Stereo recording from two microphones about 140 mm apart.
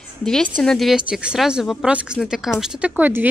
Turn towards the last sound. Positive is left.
turn(degrees=-15)  # may be behind; listen again after turning